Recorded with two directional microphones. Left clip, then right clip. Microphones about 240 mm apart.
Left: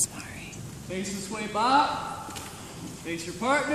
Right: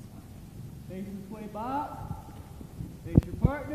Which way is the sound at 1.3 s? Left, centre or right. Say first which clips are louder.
Left 12 dB; left.